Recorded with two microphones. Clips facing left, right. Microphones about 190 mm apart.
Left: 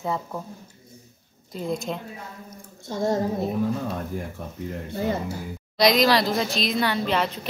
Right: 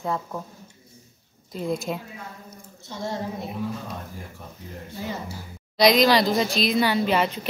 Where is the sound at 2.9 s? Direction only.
45° left (ahead or behind).